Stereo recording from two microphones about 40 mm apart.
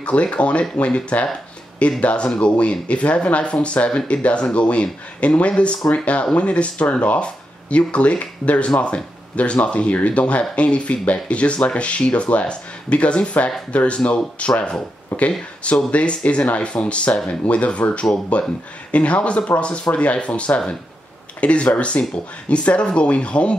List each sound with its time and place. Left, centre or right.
0.0 s speech: left
14.5 s speech: left
15.1 s speech: left